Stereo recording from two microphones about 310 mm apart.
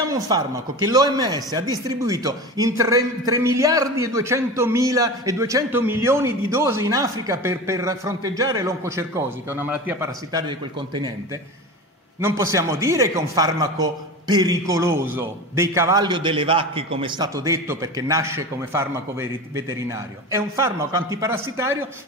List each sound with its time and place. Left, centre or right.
0.8 s a man's voice: centre
12.2 s a man's voice: centre